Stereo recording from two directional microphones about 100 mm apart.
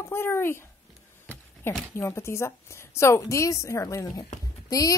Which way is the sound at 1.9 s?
25° left (ahead or behind).